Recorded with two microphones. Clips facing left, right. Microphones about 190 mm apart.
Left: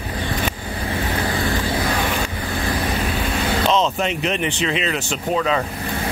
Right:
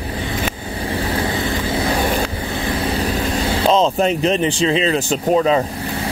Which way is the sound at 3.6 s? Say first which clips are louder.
Right 5 dB; 30° right (ahead or behind).